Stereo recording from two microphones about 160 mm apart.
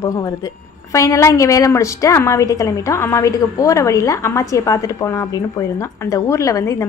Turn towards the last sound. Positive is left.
turn(degrees=20)  # may be behind; listen again after turning